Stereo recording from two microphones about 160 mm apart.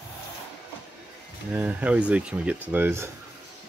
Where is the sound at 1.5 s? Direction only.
10° right (ahead or behind).